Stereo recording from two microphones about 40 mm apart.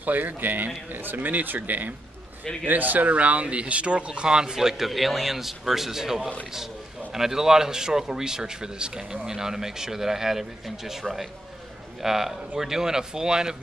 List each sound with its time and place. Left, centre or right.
0.0 s speech: right
3.1 s speech: right; by 13.6 s centre